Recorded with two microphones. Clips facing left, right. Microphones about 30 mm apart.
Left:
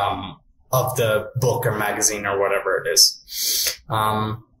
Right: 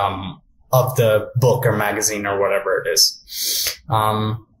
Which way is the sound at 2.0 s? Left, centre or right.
Centre.